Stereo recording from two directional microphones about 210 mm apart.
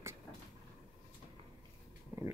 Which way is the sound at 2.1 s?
10° right (ahead or behind).